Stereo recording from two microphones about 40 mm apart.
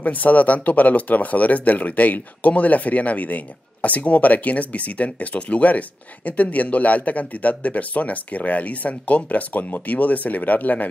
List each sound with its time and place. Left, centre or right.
0.0 s speech: left